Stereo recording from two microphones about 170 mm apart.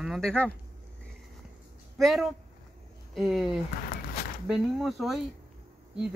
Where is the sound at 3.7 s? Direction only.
60° left (ahead or behind).